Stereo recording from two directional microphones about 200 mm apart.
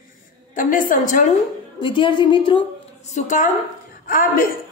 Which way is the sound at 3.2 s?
40° left (ahead or behind).